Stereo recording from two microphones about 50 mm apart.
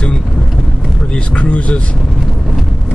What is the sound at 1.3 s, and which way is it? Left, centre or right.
Speech, left.